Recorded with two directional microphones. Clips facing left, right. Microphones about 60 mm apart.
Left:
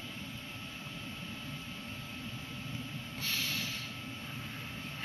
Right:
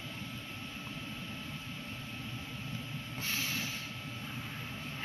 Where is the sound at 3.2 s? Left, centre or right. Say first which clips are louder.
Even; right.